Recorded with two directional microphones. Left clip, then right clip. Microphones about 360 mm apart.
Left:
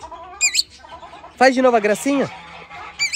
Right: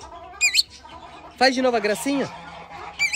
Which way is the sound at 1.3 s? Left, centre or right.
Centre.